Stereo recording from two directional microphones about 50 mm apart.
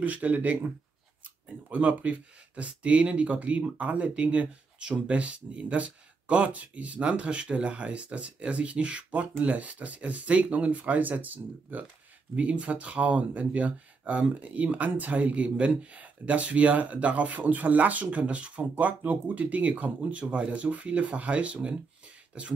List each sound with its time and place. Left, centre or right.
0.0 s speech: right
1.7 s speech: right